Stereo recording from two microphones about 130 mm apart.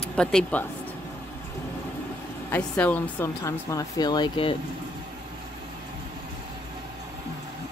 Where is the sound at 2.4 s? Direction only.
15° left (ahead or behind); by 4.6 s 40° left (ahead or behind).